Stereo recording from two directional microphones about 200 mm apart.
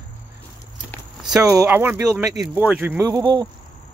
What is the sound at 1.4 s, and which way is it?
Speech, 15° right (ahead or behind).